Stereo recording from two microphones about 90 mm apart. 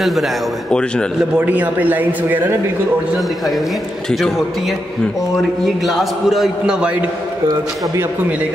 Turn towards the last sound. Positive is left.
turn(degrees=-15)  # may be behind; listen again after turning